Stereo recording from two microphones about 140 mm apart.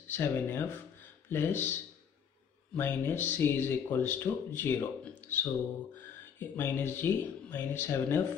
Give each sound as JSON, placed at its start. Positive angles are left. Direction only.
{"t": 0.1, "sound": "speech", "side_deg": 15}
{"t": 5.2, "sound": "mantra", "side_deg": 15}
{"t": 6.5, "sound": "speech", "side_deg": 15}